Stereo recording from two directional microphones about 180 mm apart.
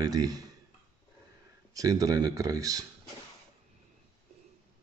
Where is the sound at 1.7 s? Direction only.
20° right (ahead or behind).